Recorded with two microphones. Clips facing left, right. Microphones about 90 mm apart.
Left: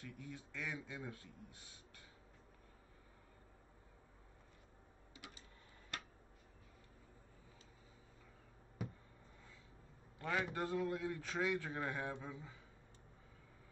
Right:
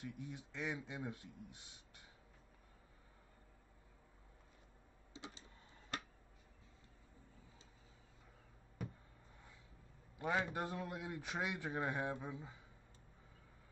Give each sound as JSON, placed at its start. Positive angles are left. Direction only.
{"t": 0.0, "sound": "a man's voice", "side_deg": -20}
{"t": 5.1, "sound": "printer", "side_deg": -25}
{"t": 8.8, "sound": "a sound", "side_deg": 5}
{"t": 10.1, "sound": "a man's voice", "side_deg": -20}